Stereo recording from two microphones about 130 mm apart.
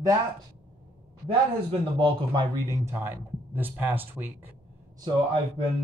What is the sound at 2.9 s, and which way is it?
A man's voice, 15° right (ahead or behind).